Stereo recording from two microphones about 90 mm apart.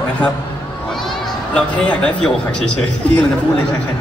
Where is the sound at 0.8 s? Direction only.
5° left (ahead or behind).